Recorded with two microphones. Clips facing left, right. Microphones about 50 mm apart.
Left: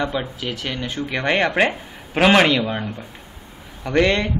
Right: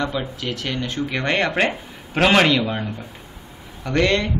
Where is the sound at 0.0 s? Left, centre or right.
Centre.